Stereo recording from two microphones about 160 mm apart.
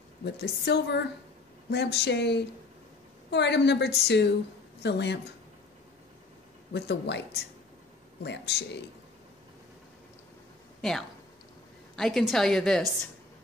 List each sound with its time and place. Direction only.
0.2 s a woman's voice: 90° left
6.7 s a woman's voice: 90° left
10.8 s a woman's voice: centre (ahead or behind)